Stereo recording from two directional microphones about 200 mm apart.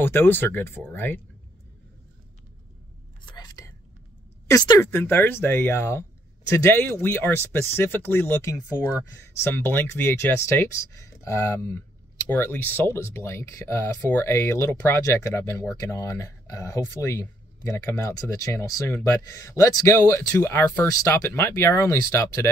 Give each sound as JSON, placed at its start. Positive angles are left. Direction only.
{"t": 0.0, "sound": "speech", "side_deg": 10}
{"t": 3.3, "sound": "whispering", "side_deg": 20}
{"t": 4.5, "sound": "speech", "side_deg": 15}